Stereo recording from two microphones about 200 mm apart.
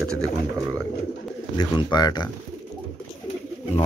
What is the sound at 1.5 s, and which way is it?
Speech, 20° left (ahead or behind).